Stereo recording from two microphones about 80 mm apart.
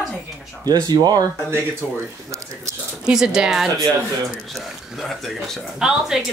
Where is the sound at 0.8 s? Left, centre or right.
Right.